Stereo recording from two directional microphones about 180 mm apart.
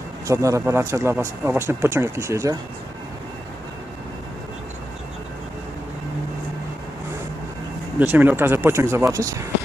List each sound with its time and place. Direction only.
0.3 s speech: 15° right (ahead or behind)
8.0 s speech: 10° right (ahead or behind)